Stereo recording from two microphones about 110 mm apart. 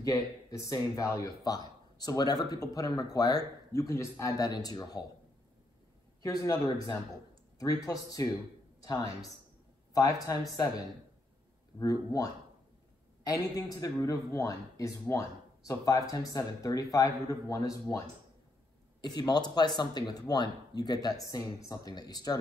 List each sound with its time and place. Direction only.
0.0 s speech: 30° left (ahead or behind)
6.2 s speech: 30° left (ahead or behind)
7.8 s speech: 30° left (ahead or behind)
10.5 s speech: 35° left (ahead or behind)